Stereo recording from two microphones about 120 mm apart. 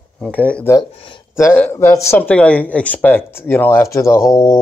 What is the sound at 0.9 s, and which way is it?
Speech, 45° left (ahead or behind).